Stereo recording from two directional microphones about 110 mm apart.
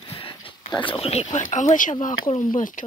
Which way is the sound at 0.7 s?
55° left (ahead or behind).